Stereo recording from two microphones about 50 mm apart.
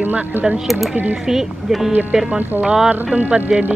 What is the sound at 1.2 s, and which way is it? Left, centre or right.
Speech, centre.